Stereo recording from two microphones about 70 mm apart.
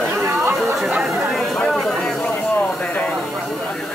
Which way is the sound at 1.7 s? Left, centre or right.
Centre.